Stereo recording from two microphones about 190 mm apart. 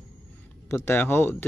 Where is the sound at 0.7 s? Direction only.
10° left (ahead or behind).